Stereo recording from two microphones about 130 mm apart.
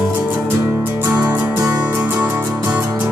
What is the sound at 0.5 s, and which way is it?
Music, 20° right (ahead or behind).